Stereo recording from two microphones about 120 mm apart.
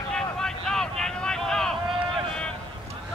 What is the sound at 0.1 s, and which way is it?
Vehicle, 5° left (ahead or behind).